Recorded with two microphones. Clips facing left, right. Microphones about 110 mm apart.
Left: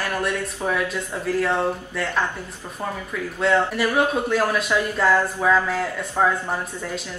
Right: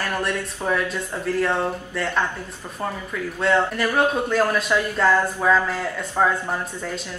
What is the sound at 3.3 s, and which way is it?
A woman's voice, centre (ahead or behind).